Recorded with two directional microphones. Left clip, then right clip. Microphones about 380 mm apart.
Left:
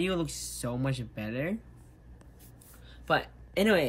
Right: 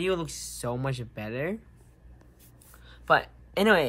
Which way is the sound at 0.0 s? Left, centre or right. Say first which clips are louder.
Right 2 dB; centre.